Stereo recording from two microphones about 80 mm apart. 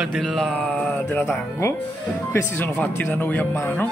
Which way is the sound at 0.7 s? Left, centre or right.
Centre.